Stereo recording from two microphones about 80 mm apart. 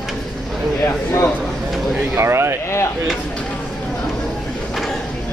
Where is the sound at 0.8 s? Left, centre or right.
Left.